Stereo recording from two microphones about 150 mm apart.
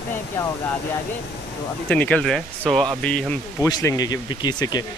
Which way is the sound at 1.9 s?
10° left (ahead or behind).